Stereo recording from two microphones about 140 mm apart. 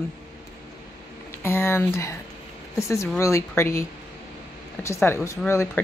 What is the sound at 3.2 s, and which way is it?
Speech, 20° left (ahead or behind).